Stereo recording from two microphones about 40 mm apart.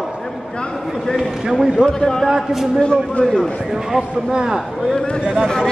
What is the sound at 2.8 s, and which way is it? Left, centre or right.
Speech, left.